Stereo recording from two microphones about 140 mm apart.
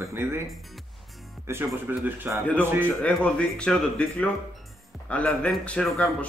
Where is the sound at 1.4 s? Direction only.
15° right (ahead or behind).